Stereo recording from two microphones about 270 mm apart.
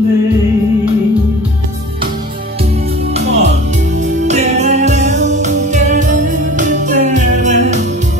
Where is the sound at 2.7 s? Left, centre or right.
Right.